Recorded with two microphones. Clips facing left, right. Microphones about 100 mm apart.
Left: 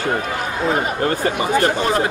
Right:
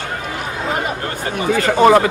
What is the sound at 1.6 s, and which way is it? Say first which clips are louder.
Speech: right 7 dB; 80° right.